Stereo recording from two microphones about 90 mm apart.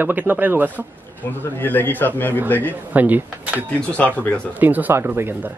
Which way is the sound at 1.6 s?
20° left (ahead or behind).